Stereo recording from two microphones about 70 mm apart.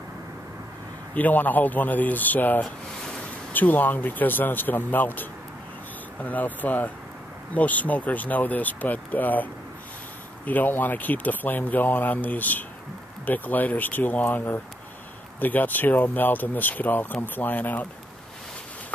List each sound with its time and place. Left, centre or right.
1.1 s speech: left